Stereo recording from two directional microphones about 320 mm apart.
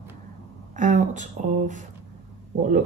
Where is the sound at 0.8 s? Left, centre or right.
Right.